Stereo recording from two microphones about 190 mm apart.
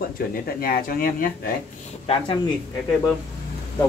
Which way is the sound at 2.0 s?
30° left (ahead or behind).